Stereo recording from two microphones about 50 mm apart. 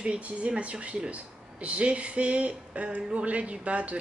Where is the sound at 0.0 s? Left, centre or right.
Right.